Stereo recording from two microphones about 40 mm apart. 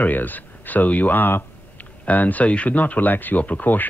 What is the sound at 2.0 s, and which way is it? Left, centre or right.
Speech, left.